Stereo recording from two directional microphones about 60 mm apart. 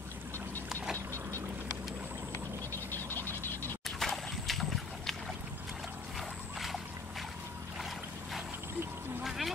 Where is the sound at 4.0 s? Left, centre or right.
Centre.